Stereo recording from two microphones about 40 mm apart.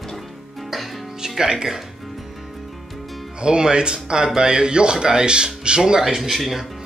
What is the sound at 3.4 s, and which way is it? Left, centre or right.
Speech, right.